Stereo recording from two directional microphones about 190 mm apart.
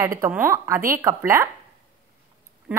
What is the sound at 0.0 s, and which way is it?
A woman's voice, 15° right (ahead or behind).